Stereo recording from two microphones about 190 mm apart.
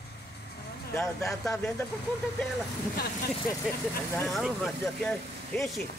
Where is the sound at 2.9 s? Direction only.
55° left (ahead or behind).